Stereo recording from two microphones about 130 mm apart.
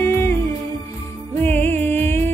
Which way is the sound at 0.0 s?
20° left (ahead or behind).